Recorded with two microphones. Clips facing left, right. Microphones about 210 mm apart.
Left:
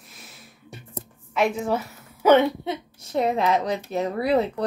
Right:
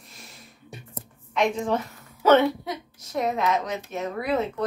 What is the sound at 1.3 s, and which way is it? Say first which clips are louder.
A woman's voice: left 1 dB; 5° left (ahead or behind).